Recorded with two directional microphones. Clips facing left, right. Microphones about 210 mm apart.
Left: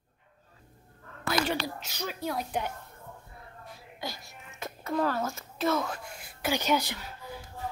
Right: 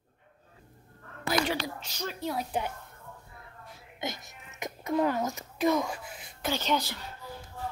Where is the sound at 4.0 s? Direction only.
20° right (ahead or behind); by 6.9 s 10° left (ahead or behind).